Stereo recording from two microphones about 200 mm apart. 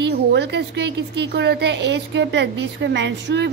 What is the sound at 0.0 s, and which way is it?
A woman's voice, 60° right (ahead or behind).